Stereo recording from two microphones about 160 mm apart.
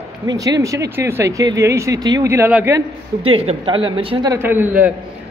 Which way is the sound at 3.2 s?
35° right (ahead or behind).